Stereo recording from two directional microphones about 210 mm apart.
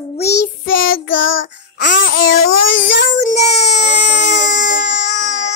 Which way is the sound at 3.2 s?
30° left (ahead or behind).